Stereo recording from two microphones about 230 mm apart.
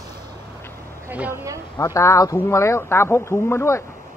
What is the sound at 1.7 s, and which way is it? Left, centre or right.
Speech, centre.